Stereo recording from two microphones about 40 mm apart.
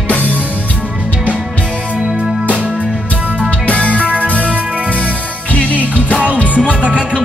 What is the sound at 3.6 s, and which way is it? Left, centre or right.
Music, left.